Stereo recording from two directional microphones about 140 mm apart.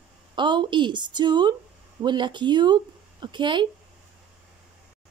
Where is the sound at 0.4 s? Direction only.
35° right (ahead or behind).